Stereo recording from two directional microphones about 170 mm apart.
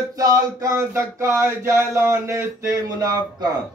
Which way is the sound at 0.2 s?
20° right (ahead or behind).